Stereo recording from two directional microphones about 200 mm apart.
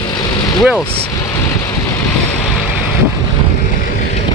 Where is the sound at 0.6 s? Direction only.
Centre (ahead or behind).